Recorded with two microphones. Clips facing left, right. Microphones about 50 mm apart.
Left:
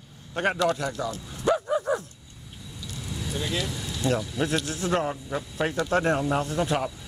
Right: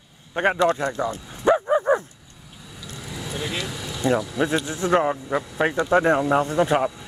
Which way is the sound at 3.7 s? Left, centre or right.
Right.